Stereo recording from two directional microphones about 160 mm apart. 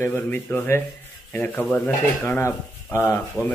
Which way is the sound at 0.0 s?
15° left (ahead or behind).